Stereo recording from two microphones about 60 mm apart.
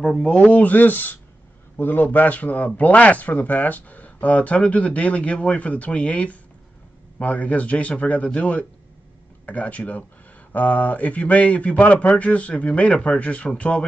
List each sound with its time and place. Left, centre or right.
0.0 s speech: centre